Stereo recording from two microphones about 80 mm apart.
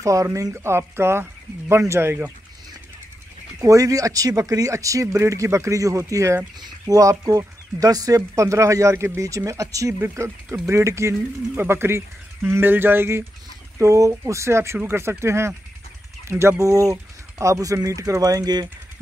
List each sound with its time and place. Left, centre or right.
0.0 s speech: right
0.6 s speech: right
3.6 s speech: right
13.7 s speech: right